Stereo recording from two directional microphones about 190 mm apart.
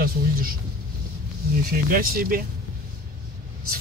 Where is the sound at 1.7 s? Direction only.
50° right (ahead or behind).